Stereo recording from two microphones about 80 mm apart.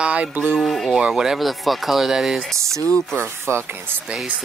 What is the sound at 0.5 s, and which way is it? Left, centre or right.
Speech, centre.